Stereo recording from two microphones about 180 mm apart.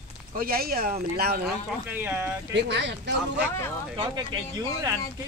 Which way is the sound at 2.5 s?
70° right (ahead or behind).